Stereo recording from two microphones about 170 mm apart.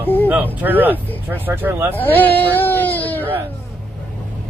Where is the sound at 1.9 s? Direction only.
10° left (ahead or behind).